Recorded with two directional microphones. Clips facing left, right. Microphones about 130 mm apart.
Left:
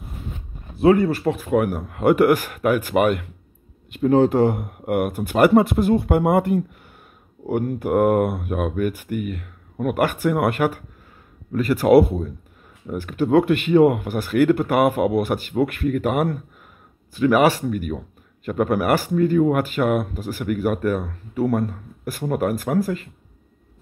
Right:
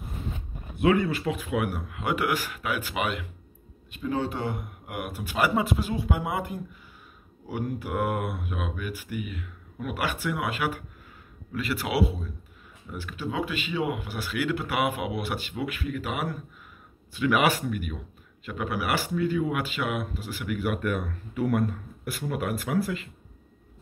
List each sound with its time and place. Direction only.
0.7 s speech: 35° left (ahead or behind)
4.3 s speech: 45° left (ahead or behind)
17.2 s speech: 40° left (ahead or behind)